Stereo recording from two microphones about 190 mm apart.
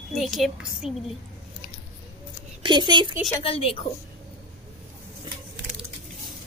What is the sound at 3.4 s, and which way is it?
Speech, 30° left (ahead or behind).